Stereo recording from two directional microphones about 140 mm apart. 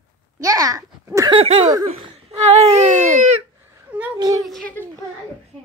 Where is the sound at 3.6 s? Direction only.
15° right (ahead or behind).